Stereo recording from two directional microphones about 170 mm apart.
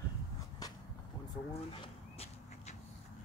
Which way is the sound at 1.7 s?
35° left (ahead or behind).